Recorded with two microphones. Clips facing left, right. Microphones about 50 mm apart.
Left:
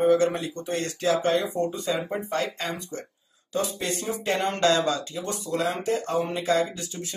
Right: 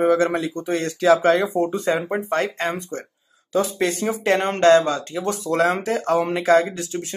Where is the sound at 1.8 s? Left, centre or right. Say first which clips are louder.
Right 6 dB; right.